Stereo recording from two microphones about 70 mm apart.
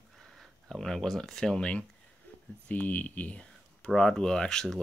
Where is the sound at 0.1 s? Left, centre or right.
Centre.